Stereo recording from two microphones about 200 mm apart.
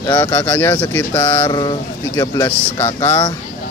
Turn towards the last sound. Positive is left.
turn(degrees=10)  # may be behind; listen again after turning